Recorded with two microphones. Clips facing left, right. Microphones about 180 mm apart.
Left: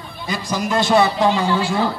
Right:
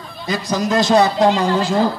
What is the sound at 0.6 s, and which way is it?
Speech, 40° right (ahead or behind).